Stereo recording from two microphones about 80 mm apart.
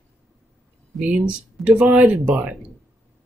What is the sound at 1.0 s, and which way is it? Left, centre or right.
Speech, centre.